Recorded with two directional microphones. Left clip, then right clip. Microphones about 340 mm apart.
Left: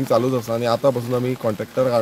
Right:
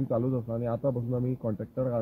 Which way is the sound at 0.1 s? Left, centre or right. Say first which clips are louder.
Left 13 dB; centre.